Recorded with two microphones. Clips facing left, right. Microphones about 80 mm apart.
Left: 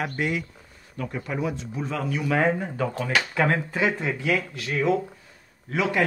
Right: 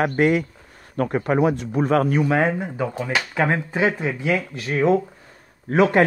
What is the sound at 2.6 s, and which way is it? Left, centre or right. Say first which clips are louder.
Speech: right 2 dB; centre.